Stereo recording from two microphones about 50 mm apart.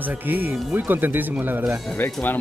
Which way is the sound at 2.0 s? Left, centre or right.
Left.